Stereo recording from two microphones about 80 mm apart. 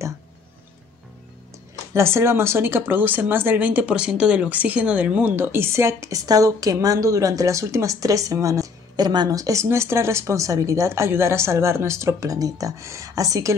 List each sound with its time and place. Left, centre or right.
2.0 s speech: right; by 5.3 s centre
5.3 s a woman's voice: right
8.9 s speech: right